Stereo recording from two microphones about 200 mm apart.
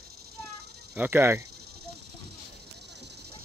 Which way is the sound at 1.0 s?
10° right (ahead or behind).